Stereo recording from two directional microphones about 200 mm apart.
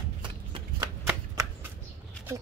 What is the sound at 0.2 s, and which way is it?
Shuffling cards, 25° right (ahead or behind).